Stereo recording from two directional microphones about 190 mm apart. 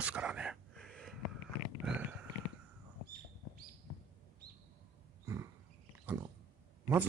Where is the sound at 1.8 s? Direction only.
5° right (ahead or behind).